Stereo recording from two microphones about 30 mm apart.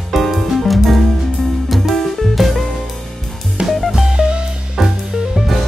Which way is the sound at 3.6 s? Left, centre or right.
Right.